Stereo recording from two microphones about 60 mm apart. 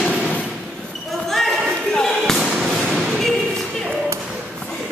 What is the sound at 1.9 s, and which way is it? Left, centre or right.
Basketball bounce, centre.